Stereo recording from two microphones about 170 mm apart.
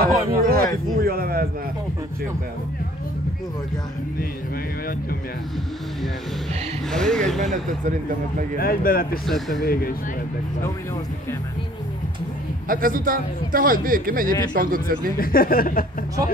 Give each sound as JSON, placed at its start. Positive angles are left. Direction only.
{"t": 0.0, "sound": "a man's voice", "side_deg": -60}
{"t": 6.9, "sound": "speech", "side_deg": 5}
{"t": 7.5, "sound": "speech", "side_deg": -50}
{"t": 8.5, "sound": "speech", "side_deg": 60}
{"t": 9.2, "sound": "speech", "side_deg": 0}
{"t": 9.6, "sound": "speech", "side_deg": 65}
{"t": 12.6, "sound": "a man's voice", "side_deg": -55}
{"t": 15.1, "sound": "speech", "side_deg": 60}